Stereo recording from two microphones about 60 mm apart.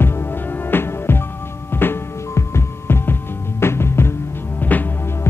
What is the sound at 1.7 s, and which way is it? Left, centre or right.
Heart sounds, left.